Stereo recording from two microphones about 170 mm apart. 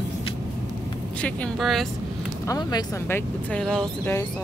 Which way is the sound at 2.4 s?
20° left (ahead or behind).